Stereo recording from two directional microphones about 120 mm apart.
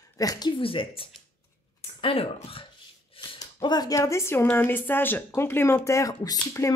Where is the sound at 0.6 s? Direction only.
50° left (ahead or behind).